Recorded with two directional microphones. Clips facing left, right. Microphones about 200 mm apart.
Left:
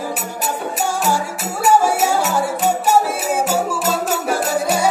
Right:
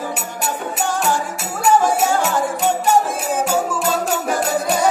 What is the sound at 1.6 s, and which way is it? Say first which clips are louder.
Music: even; 5° left (ahead or behind).